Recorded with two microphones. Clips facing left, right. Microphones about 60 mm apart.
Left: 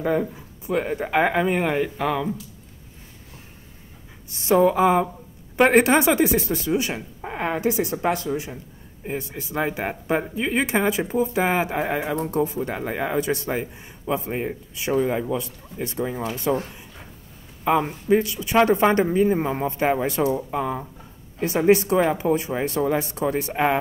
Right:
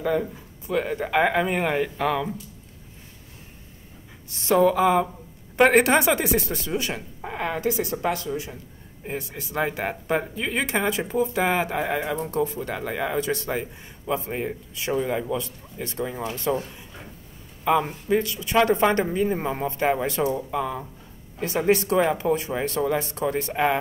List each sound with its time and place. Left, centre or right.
0.0 s a woman's voice: left; by 2.3 s centre
4.3 s speech: centre
5.6 s speech: centre
7.3 s a woman's voice: left
9.0 s a woman's voice: centre; by 16.5 s left
17.6 s speech: centre